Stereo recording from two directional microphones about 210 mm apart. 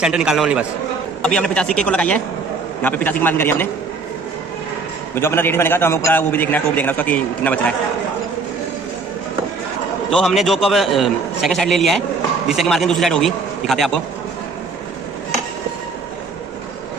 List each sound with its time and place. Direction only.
0.0 s a man's voice: 5° right (ahead or behind)
5.1 s a man's voice: 10° left (ahead or behind)
10.1 s a man's voice: centre (ahead or behind)